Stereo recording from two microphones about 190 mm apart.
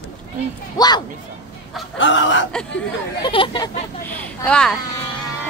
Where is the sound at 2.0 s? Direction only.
75° left (ahead or behind).